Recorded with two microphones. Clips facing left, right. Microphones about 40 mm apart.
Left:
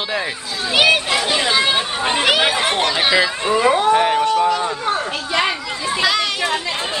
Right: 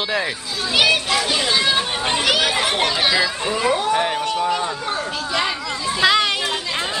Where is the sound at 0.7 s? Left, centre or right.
Centre.